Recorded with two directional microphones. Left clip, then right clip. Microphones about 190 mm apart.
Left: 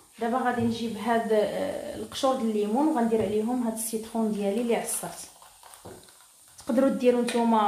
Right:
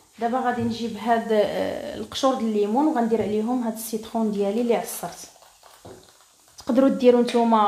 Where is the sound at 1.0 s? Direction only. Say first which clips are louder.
Right 4 dB; 45° right (ahead or behind).